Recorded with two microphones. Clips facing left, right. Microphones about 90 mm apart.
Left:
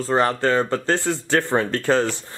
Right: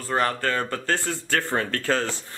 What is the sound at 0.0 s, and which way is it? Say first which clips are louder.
Speech: left 5 dB; 20° left (ahead or behind).